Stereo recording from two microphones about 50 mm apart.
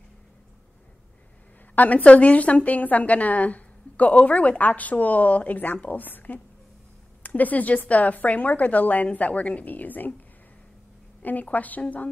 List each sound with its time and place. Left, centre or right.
1.8 s a woman's voice: left
11.5 s a woman's voice: left